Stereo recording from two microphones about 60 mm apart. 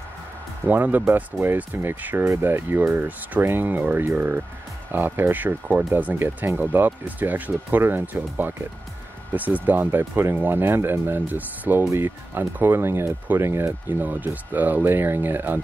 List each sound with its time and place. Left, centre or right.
0.7 s speech: right